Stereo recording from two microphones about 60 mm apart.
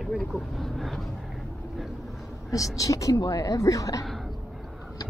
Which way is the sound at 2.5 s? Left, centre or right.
Left.